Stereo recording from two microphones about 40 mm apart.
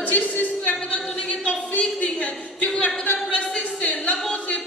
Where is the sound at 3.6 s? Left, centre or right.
Left.